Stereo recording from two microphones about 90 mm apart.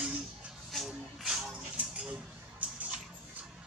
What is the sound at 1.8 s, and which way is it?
Speech, 15° right (ahead or behind).